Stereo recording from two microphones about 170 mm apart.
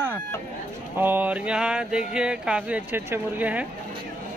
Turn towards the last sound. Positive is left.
turn(degrees=-10)  # may be behind; listen again after turning